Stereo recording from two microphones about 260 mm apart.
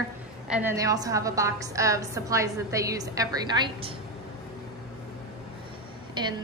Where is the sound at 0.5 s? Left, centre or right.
Centre.